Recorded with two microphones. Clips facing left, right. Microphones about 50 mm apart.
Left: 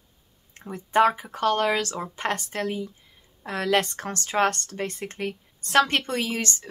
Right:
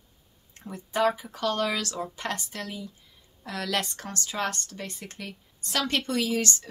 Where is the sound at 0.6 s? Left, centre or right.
Left.